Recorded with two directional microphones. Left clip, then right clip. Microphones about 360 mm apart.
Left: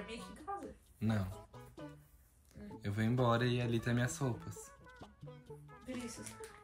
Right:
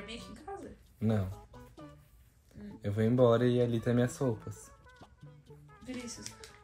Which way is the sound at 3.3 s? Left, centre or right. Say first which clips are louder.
Right 7 dB; left.